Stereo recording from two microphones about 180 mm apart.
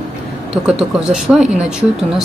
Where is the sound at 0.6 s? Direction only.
5° right (ahead or behind).